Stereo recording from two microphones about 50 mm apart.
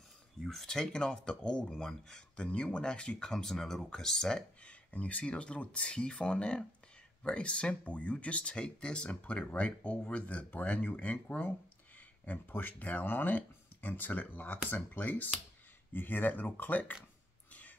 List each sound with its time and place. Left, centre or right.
0.4 s speech: centre
2.4 s speech: left
4.6 s speech: left